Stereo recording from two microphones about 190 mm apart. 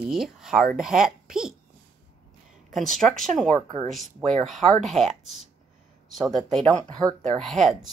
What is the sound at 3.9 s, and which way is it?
A woman's voice, centre (ahead or behind).